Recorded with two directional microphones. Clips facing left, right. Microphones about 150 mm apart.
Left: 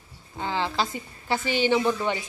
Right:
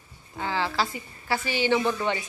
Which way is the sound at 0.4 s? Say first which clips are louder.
Even; 20° left (ahead or behind).